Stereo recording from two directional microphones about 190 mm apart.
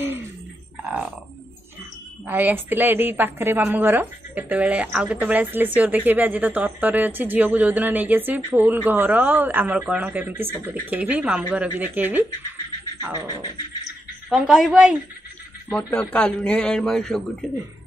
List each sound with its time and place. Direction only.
0.8 s a man's voice: 5° right (ahead or behind)
2.2 s speech: 10° right (ahead or behind)
14.3 s a man's voice: centre (ahead or behind)
15.7 s a man's voice: 5° left (ahead or behind)